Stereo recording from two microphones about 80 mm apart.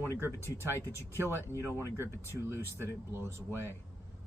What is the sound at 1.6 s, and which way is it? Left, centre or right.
Speech, right.